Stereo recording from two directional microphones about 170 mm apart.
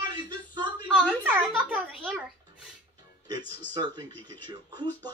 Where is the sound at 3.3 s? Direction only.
25° right (ahead or behind).